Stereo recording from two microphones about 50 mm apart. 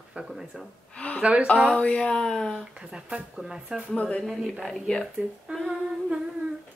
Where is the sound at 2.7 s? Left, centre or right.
Centre.